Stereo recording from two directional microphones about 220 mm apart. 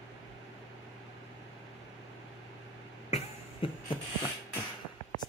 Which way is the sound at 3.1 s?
25° left (ahead or behind).